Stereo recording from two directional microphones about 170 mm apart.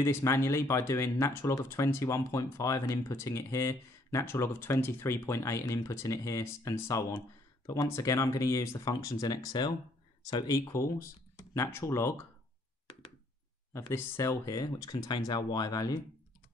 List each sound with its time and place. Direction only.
0.0 s speech: 15° left (ahead or behind)
13.7 s speech: 15° left (ahead or behind)